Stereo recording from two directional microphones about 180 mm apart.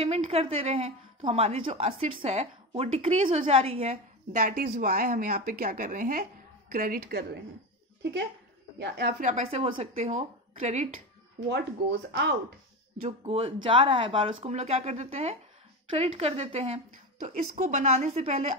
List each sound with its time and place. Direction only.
0.0 s a woman's voice: 35° right (ahead or behind); by 7.2 s 60° right (ahead or behind)
8.0 s speech: 75° right (ahead or behind)
9.2 s a woman's voice: 40° right (ahead or behind)
11.5 s speech: 70° right (ahead or behind)
12.9 s a woman's voice: 35° right (ahead or behind)